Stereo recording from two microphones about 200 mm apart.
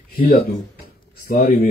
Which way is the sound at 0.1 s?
45° left (ahead or behind).